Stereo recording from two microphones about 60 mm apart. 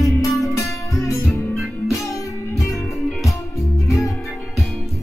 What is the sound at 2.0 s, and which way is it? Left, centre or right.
Music, left.